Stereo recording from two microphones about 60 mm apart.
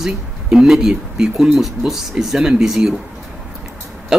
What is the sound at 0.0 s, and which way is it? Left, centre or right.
Speech, centre.